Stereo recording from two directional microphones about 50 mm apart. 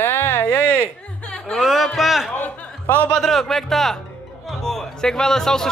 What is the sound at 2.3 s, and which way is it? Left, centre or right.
Chuckle, left.